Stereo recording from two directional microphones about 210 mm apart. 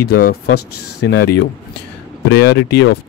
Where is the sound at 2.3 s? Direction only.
55° left (ahead or behind).